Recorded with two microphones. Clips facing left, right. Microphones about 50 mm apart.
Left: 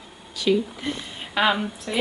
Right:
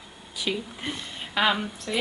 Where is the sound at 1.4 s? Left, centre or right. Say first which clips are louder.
Left 3 dB; centre.